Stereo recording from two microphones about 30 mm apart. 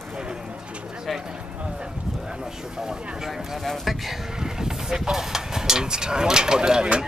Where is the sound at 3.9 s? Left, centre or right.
Centre.